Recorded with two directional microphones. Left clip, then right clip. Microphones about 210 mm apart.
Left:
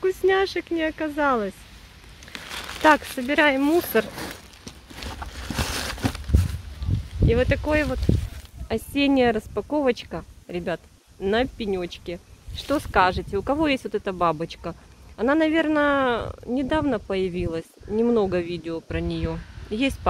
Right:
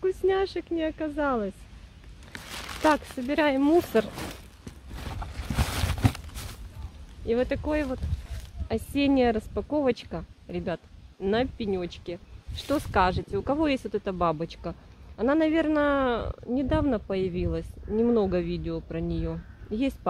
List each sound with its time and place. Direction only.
0.0 s speech: centre (ahead or behind)
2.8 s speech: 5° left (ahead or behind)
4.1 s a sound: 20° right (ahead or behind)
7.2 s speech: 5° right (ahead or behind)